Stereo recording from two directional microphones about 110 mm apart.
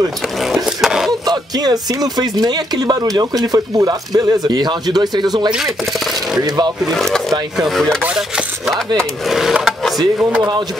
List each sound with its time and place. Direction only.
0.7 s a sound: 5° right (ahead or behind)
1.2 s speech: 35° right (ahead or behind)
6.9 s speech: centre (ahead or behind)
9.3 s speech: 5° right (ahead or behind)